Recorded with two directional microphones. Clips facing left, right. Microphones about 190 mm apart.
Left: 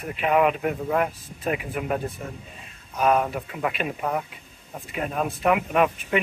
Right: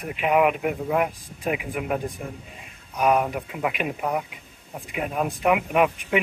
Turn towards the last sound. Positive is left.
turn(degrees=-15)  # may be behind; listen again after turning